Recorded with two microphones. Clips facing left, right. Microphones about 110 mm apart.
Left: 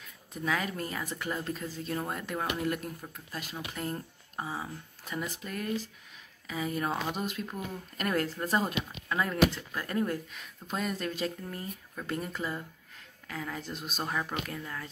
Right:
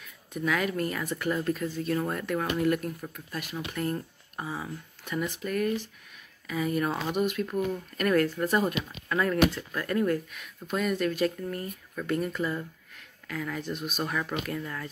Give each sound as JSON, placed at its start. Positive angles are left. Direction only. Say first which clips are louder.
{"t": 0.5, "sound": "speech", "louder": "right 4 dB", "side_deg": 25}